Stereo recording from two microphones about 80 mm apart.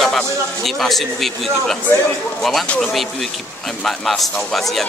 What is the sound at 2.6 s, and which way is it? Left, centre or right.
Speech, centre.